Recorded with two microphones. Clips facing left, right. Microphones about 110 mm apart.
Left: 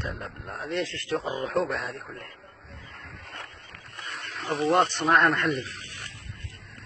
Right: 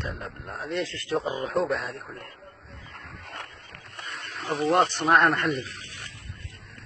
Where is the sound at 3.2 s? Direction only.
75° right (ahead or behind).